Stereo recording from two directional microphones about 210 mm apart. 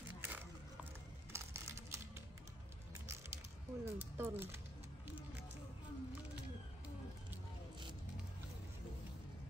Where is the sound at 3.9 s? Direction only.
10° right (ahead or behind).